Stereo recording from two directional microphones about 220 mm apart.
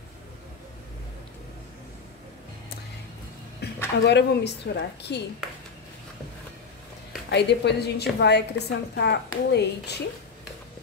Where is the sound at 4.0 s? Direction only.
50° left (ahead or behind).